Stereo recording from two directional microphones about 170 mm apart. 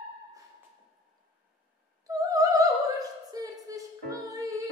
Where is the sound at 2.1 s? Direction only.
20° right (ahead or behind).